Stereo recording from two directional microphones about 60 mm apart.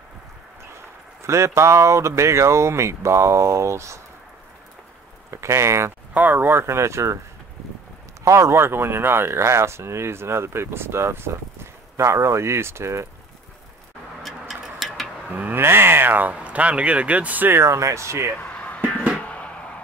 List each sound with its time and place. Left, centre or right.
1.2 s speech: right
5.3 s speech: right
6.1 s speech: right
8.2 s speech: right
14.5 s a sound: centre
15.2 s speech: right
15.6 s a sound: right
16.3 s speech: right
17.5 s speech: right
18.4 s music: left
19.2 s a sound: left